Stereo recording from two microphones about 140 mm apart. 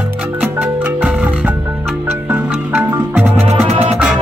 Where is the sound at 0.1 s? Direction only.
10° right (ahead or behind).